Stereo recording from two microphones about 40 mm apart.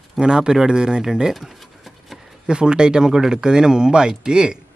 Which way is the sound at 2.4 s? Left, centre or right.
Right.